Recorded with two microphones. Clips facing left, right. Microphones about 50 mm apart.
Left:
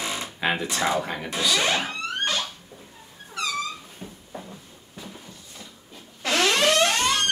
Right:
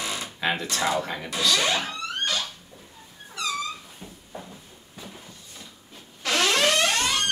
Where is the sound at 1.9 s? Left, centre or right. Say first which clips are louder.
Left 1 dB; left.